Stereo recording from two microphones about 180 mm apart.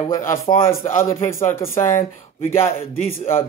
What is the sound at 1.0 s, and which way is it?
Speech, 15° left (ahead or behind).